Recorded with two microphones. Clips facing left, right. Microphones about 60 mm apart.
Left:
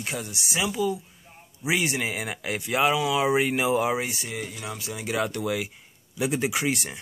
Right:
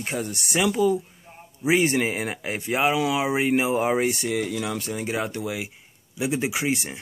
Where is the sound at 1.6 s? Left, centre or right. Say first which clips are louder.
Right 5 dB; right.